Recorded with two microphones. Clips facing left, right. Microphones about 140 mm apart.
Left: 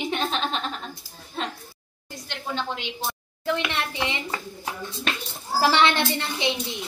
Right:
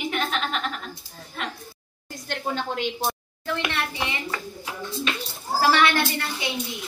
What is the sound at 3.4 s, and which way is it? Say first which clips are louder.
Speech: left 2 dB; 20° left (ahead or behind).